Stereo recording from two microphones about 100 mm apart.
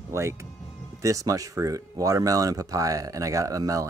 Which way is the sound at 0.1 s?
30° right (ahead or behind).